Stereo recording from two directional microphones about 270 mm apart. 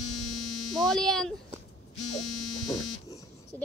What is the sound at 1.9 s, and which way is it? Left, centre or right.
Buzzer, left.